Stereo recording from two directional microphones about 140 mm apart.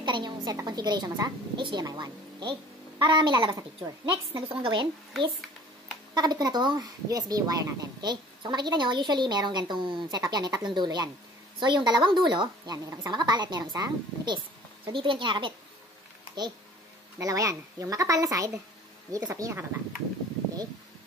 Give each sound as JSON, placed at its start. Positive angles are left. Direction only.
{"t": 0.0, "sound": "a woman's voice", "side_deg": -30}
{"t": 6.1, "sound": "speech", "side_deg": -30}
{"t": 17.2, "sound": "a woman's voice", "side_deg": -25}